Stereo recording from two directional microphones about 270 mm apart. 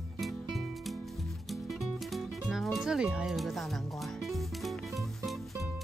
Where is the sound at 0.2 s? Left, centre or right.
Centre.